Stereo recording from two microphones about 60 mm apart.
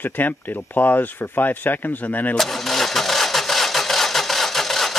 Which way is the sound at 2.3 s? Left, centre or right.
Centre.